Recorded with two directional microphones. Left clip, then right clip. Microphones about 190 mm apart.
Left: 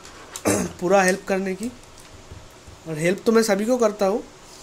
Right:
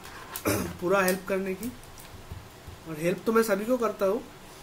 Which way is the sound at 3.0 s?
45° left (ahead or behind).